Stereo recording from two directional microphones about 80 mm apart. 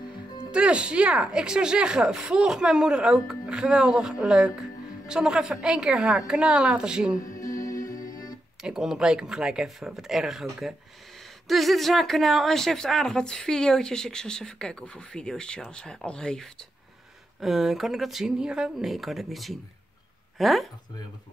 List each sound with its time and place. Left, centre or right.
0.5 s speech: centre
7.3 s music: left
8.6 s a woman's voice: centre
17.4 s speech: centre